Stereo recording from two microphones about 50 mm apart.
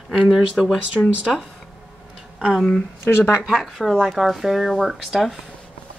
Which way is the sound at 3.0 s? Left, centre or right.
Left.